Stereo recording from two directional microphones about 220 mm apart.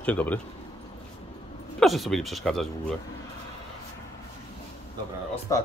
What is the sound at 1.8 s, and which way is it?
Speech, centre (ahead or behind).